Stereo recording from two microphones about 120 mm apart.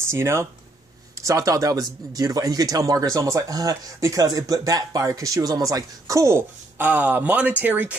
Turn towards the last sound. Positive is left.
turn(degrees=-15)  # may be behind; listen again after turning